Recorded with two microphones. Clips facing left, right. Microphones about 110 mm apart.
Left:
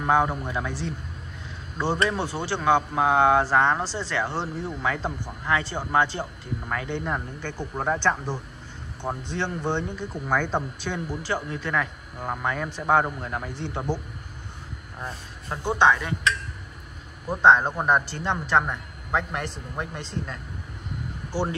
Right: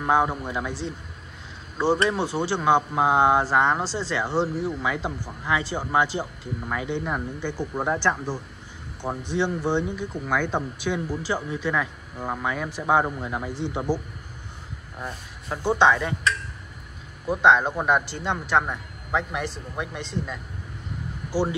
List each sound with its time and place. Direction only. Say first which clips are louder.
0.0 s speech: even; 10° right (ahead or behind)
3.8 s speech: right 2 dB; 20° left (ahead or behind)
4.1 s a man's voice: right 6 dB; 10° right (ahead or behind)
15.0 s speech: right 1 dB; 5° right (ahead or behind)
15.8 s speech: even; 15° right (ahead or behind)
17.3 s a man's voice: even; 5° right (ahead or behind)